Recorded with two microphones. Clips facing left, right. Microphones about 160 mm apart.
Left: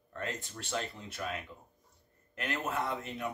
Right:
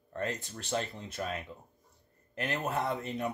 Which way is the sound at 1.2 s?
40° right (ahead or behind).